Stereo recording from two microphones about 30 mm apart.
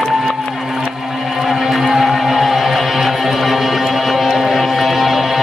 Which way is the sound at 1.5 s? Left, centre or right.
Centre.